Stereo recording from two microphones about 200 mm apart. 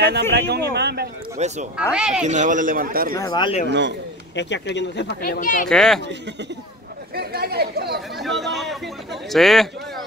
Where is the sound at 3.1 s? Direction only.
20° left (ahead or behind).